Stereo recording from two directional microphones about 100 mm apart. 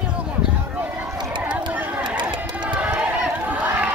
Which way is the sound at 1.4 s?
15° right (ahead or behind).